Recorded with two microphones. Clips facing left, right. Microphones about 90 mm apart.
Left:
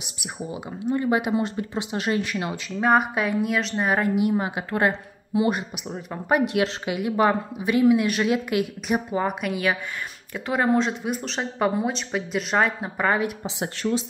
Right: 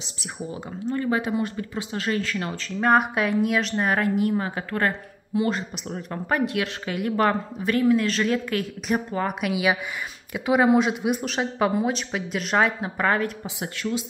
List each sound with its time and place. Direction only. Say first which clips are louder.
0.0 s a woman's voice: even; 10° left (ahead or behind)
2.8 s a woman's voice: even; centre (ahead or behind); by 7.0 s 20° left (ahead or behind)
7.0 s a woman's voice: left 1 dB; 5° left (ahead or behind)
9.4 s speech: right 1 dB; 5° right (ahead or behind)
13.6 s speech: left 3 dB; 30° left (ahead or behind)